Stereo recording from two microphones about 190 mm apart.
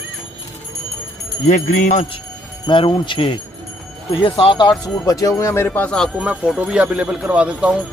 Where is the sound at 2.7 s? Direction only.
25° left (ahead or behind).